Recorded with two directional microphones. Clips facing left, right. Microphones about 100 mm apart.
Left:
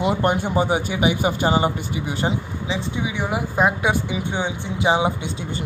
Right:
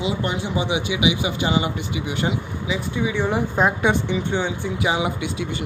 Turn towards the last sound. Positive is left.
turn(degrees=30)  # may be behind; listen again after turning